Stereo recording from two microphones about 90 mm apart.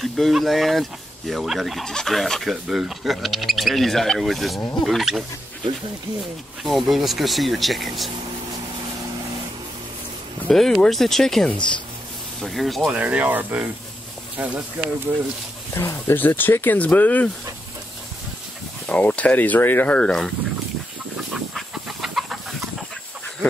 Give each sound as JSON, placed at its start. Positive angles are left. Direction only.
{"t": 0.0, "sound": "speech", "side_deg": 0}
{"t": 6.6, "sound": "speech", "side_deg": 0}
{"t": 10.5, "sound": "speech", "side_deg": 5}
{"t": 12.8, "sound": "speech", "side_deg": -15}
{"t": 15.7, "sound": "speech", "side_deg": 35}
{"t": 16.2, "sound": "speech", "side_deg": 20}
{"t": 18.9, "sound": "speech", "side_deg": 15}
{"t": 21.3, "sound": "chicken", "side_deg": -5}